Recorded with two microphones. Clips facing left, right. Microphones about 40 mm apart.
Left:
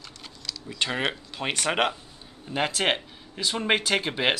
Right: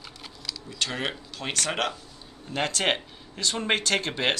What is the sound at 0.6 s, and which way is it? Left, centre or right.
Speech, centre.